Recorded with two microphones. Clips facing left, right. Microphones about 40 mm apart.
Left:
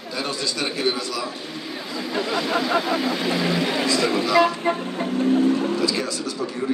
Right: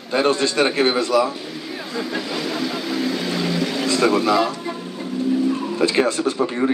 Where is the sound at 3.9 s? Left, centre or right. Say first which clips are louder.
Right 7 dB; right.